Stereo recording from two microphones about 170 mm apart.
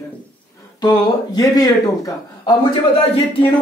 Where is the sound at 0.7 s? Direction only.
25° left (ahead or behind).